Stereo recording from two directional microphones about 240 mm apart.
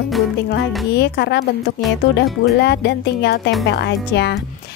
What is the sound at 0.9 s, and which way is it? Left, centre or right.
Speech, left.